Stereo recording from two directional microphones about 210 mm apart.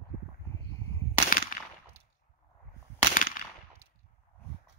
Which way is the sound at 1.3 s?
40° left (ahead or behind).